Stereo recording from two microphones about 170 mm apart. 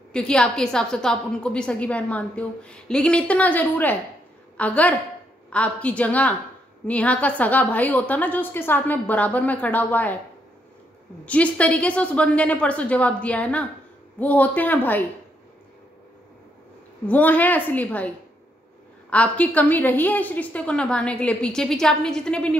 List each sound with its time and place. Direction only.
0.1 s a woman's voice: 5° left (ahead or behind)
11.2 s a woman's voice: 10° left (ahead or behind)
17.1 s a woman's voice: 10° left (ahead or behind)